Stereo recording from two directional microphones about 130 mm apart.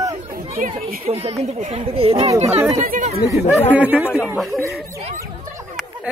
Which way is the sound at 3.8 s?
10° right (ahead or behind).